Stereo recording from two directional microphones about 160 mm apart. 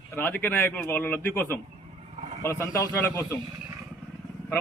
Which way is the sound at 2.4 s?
20° left (ahead or behind).